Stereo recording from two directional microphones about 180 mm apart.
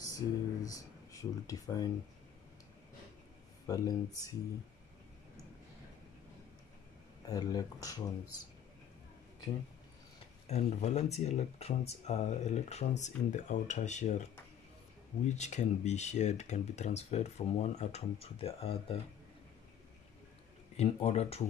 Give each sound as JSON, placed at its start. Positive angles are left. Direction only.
{"t": 0.0, "sound": "speech", "side_deg": 20}
{"t": 3.6, "sound": "speech", "side_deg": 20}
{"t": 7.2, "sound": "speech", "side_deg": 20}
{"t": 10.4, "sound": "speech", "side_deg": 35}
{"t": 15.2, "sound": "speech", "side_deg": 40}
{"t": 20.7, "sound": "speech", "side_deg": 35}